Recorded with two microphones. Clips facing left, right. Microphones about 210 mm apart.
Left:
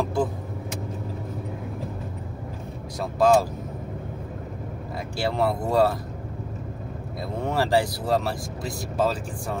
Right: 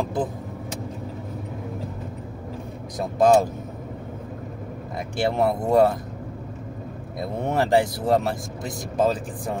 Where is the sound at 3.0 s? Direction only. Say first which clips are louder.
Right 2 dB; 20° right (ahead or behind).